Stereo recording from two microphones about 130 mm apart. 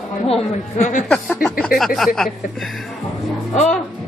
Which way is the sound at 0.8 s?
75° left (ahead or behind).